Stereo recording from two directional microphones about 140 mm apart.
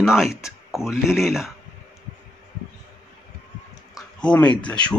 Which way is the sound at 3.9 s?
5° left (ahead or behind).